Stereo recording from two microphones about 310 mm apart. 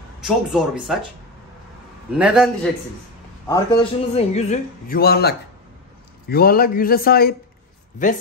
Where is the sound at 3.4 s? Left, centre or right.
Centre.